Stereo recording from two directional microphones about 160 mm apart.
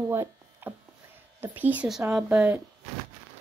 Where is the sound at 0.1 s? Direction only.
15° right (ahead or behind).